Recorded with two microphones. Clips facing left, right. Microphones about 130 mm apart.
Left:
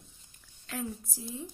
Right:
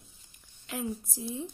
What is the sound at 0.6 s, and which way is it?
Speech, 15° right (ahead or behind).